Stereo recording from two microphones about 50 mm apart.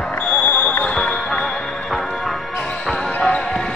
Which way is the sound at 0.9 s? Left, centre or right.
Centre.